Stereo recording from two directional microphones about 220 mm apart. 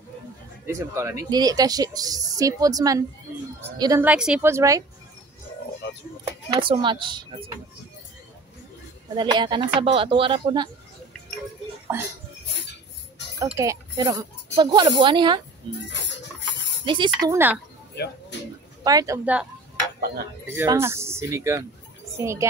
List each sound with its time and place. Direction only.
0.7 s speech: 15° right (ahead or behind)
4.0 s speech: 5° right (ahead or behind)
6.5 s speech: 20° right (ahead or behind)
9.1 s speech: 20° right (ahead or behind)
13.4 s speech: 15° right (ahead or behind)
15.9 s a sound: 55° left (ahead or behind)
16.8 s speech: 20° right (ahead or behind)
18.9 s speech: 15° right (ahead or behind)
20.5 s a child's voice: 10° right (ahead or behind)